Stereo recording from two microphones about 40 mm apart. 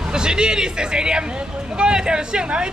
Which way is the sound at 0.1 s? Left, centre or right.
Centre.